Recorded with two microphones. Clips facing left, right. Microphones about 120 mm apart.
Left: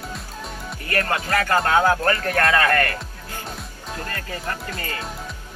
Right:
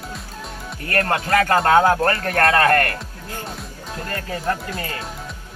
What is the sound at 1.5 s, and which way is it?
Speech, 50° right (ahead or behind).